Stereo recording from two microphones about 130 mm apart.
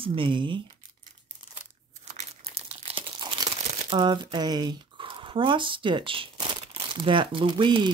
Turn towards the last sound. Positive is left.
turn(degrees=-40)  # may be behind; listen again after turning